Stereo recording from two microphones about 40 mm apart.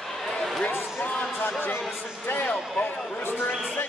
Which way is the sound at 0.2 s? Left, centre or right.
Centre.